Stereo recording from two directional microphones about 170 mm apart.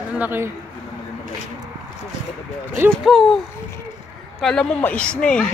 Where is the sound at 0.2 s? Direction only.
10° right (ahead or behind).